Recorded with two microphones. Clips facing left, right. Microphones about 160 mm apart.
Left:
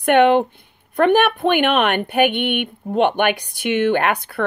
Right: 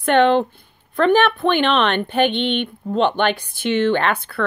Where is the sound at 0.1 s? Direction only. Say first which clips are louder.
Left 1 dB; 10° left (ahead or behind).